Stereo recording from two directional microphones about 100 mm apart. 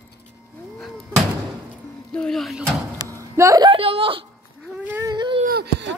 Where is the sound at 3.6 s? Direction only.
60° right (ahead or behind).